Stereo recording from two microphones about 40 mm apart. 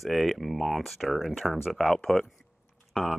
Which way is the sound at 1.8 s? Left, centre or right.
Centre.